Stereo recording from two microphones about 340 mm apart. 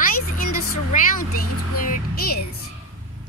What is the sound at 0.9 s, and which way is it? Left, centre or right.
A child's voice, left.